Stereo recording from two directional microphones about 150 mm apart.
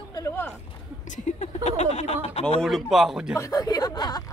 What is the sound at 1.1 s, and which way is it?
Speech, 50° left (ahead or behind).